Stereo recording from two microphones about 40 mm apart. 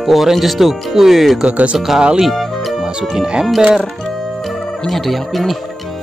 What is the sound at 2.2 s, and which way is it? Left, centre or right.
Music, centre.